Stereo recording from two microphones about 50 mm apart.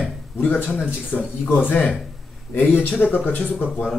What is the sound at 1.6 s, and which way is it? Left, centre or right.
Speech, left.